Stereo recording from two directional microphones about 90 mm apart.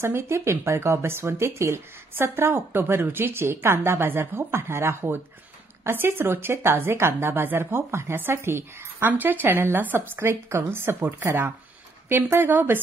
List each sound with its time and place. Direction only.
0.0 s a woman's voice: 30° right (ahead or behind)